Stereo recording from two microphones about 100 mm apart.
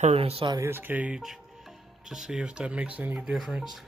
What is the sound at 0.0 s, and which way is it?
Speech, 75° right (ahead or behind).